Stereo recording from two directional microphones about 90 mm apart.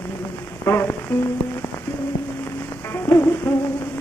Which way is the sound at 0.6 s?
25° left (ahead or behind).